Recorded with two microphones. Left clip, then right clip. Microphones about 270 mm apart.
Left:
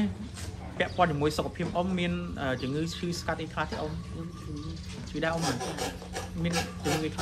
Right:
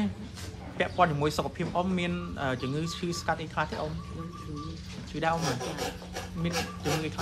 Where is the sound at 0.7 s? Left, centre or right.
Right.